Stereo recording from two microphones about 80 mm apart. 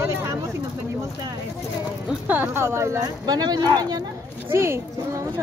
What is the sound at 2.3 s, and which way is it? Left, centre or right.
Speech, right.